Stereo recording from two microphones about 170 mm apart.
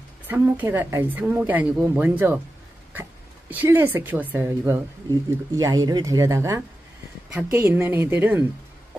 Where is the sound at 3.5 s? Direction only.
10° right (ahead or behind).